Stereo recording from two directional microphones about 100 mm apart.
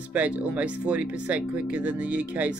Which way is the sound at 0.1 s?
15° right (ahead or behind).